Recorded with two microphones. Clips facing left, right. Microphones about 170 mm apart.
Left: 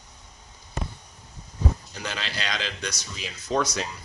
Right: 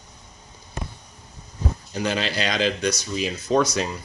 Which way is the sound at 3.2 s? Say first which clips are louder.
Right 5 dB; 55° right (ahead or behind).